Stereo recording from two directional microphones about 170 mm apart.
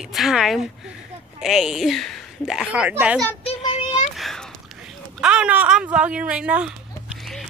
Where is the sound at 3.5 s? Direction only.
40° left (ahead or behind).